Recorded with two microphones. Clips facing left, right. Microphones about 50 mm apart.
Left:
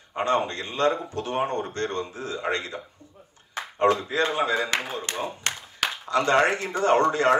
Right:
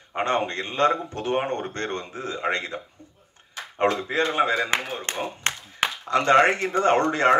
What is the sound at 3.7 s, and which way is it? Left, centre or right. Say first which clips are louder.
A man's voice: left 1 dB; right.